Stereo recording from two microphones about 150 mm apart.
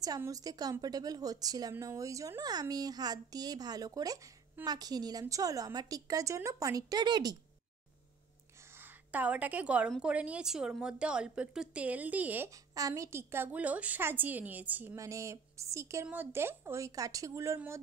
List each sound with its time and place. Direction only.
0.0 s a woman's voice: 25° right (ahead or behind)
9.1 s a woman's voice: 10° right (ahead or behind)
12.7 s a woman's voice: 20° right (ahead or behind)